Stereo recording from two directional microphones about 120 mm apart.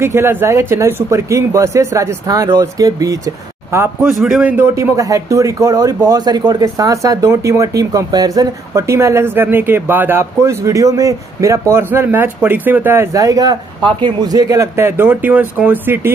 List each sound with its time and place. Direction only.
0.0 s speech: 20° right (ahead or behind)
4.3 s a man's voice: 10° right (ahead or behind)
4.7 s speech: 25° right (ahead or behind)